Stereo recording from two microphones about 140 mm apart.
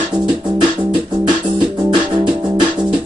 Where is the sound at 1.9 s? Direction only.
35° right (ahead or behind).